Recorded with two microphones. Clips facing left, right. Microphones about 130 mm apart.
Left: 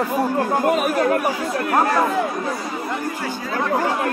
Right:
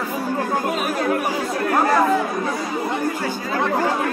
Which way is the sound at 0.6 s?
55° left (ahead or behind).